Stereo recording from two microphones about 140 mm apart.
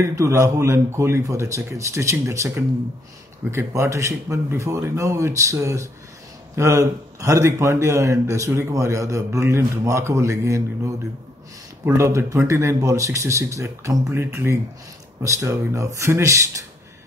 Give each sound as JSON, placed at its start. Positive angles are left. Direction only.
{"t": 0.0, "sound": "a man's voice", "side_deg": -20}